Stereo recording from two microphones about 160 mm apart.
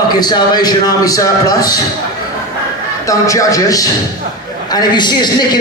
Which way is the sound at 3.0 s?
20° left (ahead or behind).